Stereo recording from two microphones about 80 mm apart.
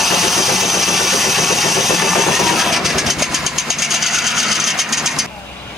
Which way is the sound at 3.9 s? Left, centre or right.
Centre.